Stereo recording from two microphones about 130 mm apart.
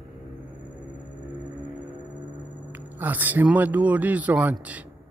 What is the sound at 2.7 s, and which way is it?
Speech, 15° right (ahead or behind).